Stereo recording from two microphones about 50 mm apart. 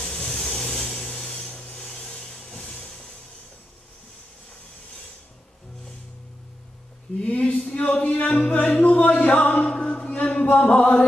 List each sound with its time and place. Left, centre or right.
0.0 s vehicle: left
0.5 s a sound: centre
1.5 s music: left
7.2 s music: left
9.7 s chant: left